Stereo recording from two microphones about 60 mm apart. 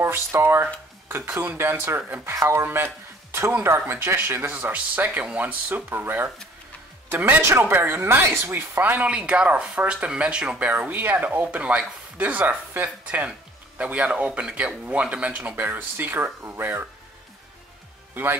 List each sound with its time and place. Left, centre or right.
0.0 s speech: right
2.0 s speech: right
2.3 s speech: right
7.4 s speech: right; by 10.7 s centre
10.9 s speech: right